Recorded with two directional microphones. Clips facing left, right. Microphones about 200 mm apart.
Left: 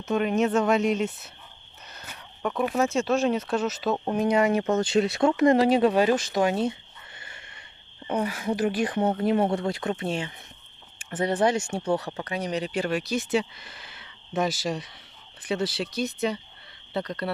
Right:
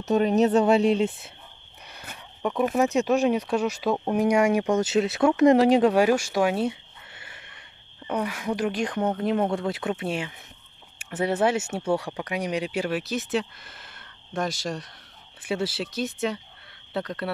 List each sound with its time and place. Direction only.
0.0 s a woman's voice: 40° right (ahead or behind)
1.9 s a sound: 10° right (ahead or behind)
2.7 s speech: 15° right (ahead or behind)
5.9 s a sound: 10° right (ahead or behind)
8.1 s speech: 5° left (ahead or behind)
15.4 s speech: 5° right (ahead or behind)